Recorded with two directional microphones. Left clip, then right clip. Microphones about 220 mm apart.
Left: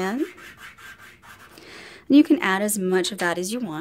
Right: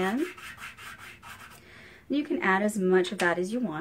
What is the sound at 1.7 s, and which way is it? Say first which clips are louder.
Speech: left 14 dB; 50° left (ahead or behind).